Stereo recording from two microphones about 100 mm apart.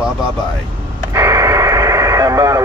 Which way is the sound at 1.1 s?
30° right (ahead or behind).